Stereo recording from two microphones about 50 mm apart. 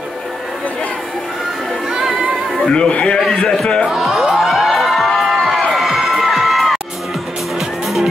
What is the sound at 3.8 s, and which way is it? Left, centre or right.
Speech, centre.